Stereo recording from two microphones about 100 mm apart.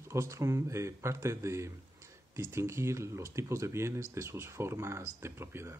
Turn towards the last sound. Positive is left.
turn(degrees=-25)  # may be behind; listen again after turning